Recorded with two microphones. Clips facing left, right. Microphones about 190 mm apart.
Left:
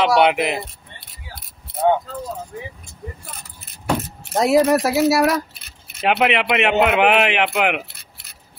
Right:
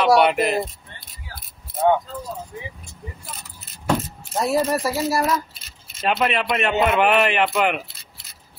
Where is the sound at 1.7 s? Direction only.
70° left (ahead or behind).